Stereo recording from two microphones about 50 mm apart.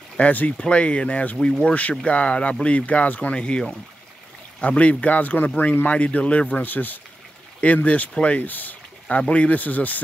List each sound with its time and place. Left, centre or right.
0.2 s speech: left
7.6 s speech: left